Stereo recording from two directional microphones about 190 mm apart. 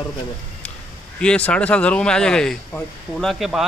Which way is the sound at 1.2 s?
5° left (ahead or behind).